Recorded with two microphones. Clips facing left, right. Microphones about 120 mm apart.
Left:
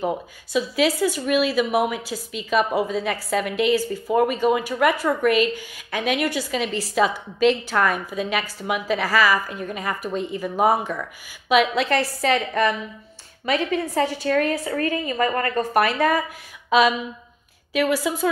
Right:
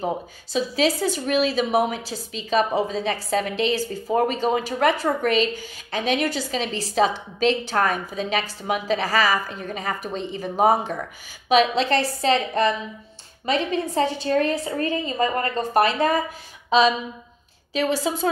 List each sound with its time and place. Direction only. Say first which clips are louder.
0.0 s a woman's voice: left 1 dB; 30° right (ahead or behind)
17.7 s a woman's voice: left 1 dB; 30° right (ahead or behind)